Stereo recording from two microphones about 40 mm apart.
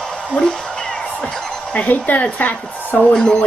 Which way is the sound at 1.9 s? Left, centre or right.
Left.